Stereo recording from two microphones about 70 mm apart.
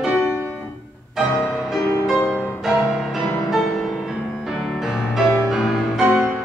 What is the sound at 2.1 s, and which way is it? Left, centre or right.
Music, centre.